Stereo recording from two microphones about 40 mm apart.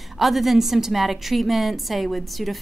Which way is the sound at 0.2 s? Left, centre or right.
Centre.